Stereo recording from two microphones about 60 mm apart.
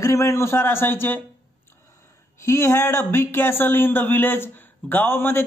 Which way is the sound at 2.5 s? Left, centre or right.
Left.